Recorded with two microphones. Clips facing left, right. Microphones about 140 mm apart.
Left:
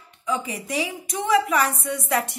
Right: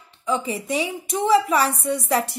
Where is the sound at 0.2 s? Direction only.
30° right (ahead or behind).